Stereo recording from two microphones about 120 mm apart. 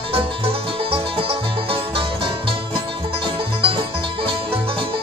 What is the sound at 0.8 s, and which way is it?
Music, 50° right (ahead or behind).